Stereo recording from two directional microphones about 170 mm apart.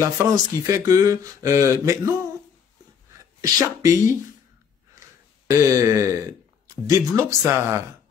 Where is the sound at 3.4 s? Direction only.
20° right (ahead or behind).